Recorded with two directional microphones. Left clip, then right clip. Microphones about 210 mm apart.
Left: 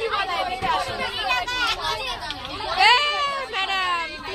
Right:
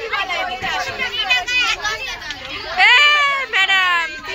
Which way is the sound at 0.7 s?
30° left (ahead or behind).